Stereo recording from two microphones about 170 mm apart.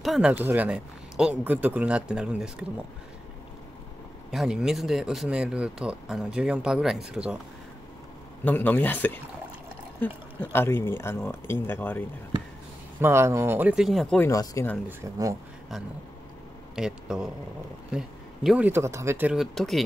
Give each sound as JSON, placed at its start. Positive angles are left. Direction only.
{"t": 0.0, "sound": "speech", "side_deg": -5}
{"t": 4.3, "sound": "speech", "side_deg": -5}
{"t": 8.5, "sound": "speech", "side_deg": 10}
{"t": 13.0, "sound": "speech", "side_deg": -15}
{"t": 14.1, "sound": "speech", "side_deg": 15}
{"t": 14.9, "sound": "speech", "side_deg": -15}
{"t": 16.7, "sound": "speech", "side_deg": -5}
{"t": 18.7, "sound": "speech", "side_deg": -15}